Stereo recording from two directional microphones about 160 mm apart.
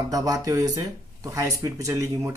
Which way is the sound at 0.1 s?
20° right (ahead or behind).